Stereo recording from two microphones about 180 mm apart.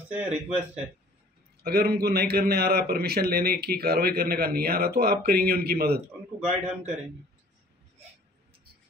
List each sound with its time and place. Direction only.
0.1 s speech: 10° right (ahead or behind)
1.6 s a man's voice: 60° right (ahead or behind)
5.9 s a man's voice: 40° right (ahead or behind)